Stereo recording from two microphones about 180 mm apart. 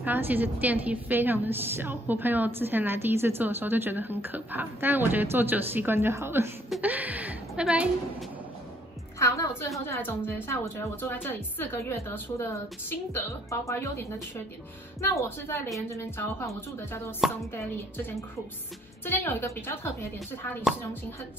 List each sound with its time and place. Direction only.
0.0 s a woman's voice: 10° right (ahead or behind)
9.2 s a woman's voice: 15° left (ahead or behind)
19.0 s a woman's voice: 10° left (ahead or behind)